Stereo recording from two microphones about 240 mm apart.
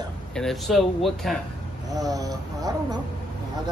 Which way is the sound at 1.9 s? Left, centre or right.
Centre.